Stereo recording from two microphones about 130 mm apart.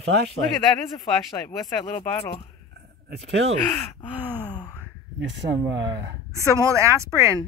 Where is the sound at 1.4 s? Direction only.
15° left (ahead or behind).